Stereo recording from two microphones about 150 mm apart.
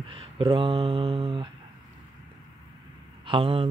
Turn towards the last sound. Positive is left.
turn(degrees=-35)  # may be behind; listen again after turning